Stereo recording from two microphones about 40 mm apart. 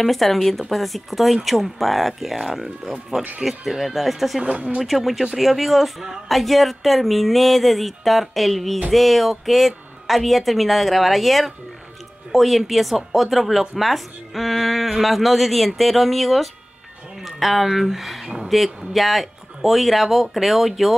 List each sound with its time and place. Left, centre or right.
0.0 s speech: centre
4.5 s speech: right
4.7 s speech: centre